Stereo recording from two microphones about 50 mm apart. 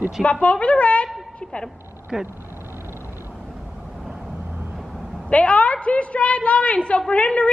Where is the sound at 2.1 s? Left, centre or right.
Centre.